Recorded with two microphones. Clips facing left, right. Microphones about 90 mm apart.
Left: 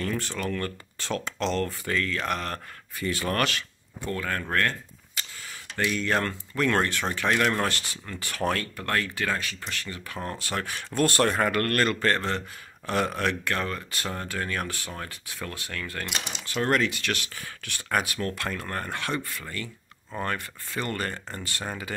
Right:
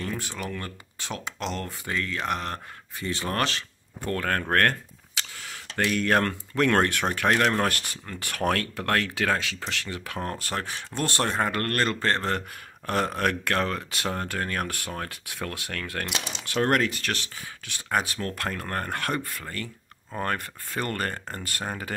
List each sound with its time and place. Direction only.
0.0 s speech: 15° right (ahead or behind)
4.0 s speech: 55° right (ahead or behind)
5.1 s a sound: 80° right
5.9 s speech: 60° right (ahead or behind); by 7.6 s 40° right (ahead or behind)
7.6 s speech: 55° right (ahead or behind); by 10.1 s 85° right
10.4 s speech: 45° right (ahead or behind)
11.0 s speech: 25° right (ahead or behind)
12.3 s speech: 45° right (ahead or behind)
13.3 s speech: 65° right (ahead or behind)
16.6 s speech: 45° right (ahead or behind)
17.4 s speech: 20° right (ahead or behind)
18.0 s speech: 35° right (ahead or behind)
18.3 s speech: 45° right (ahead or behind)